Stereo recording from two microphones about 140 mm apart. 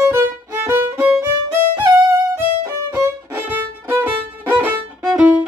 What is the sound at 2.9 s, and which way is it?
Violin, 20° right (ahead or behind).